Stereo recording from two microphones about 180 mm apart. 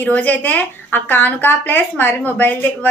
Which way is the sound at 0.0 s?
10° left (ahead or behind).